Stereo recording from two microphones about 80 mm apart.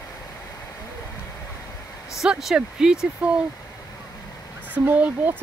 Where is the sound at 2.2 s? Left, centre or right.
Centre.